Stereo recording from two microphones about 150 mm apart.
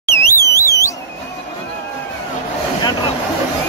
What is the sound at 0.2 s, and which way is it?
Alarm, 20° left (ahead or behind).